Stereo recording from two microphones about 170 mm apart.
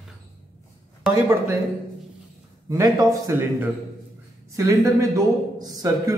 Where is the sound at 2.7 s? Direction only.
20° right (ahead or behind).